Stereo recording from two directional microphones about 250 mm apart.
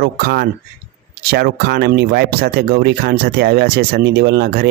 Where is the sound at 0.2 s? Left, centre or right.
Right.